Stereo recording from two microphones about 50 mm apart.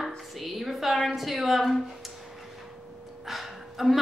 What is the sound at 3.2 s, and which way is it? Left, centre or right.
Gasp, centre.